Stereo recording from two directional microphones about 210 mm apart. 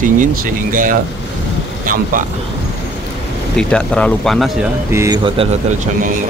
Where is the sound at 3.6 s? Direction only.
5° left (ahead or behind).